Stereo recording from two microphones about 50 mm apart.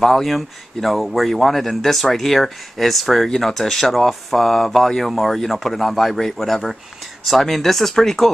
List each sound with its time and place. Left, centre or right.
0.0 s speech: centre